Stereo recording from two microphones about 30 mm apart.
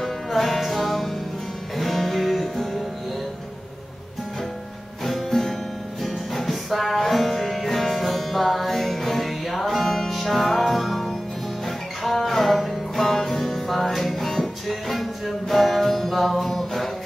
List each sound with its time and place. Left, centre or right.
0.0 s music: centre
5.0 s music: centre